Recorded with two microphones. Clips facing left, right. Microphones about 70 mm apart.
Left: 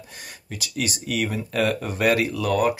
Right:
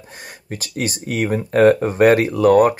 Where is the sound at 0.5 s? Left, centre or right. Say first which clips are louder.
Right 4 dB; right.